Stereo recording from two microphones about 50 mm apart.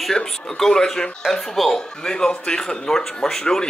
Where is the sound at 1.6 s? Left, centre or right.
Centre.